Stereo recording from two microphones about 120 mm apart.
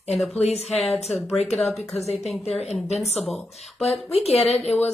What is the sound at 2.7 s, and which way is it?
Speech, 65° left (ahead or behind).